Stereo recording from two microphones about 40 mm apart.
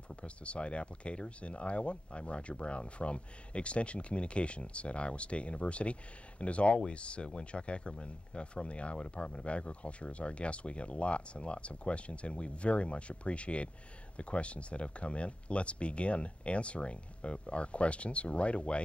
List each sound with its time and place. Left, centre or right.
0.1 s speech: left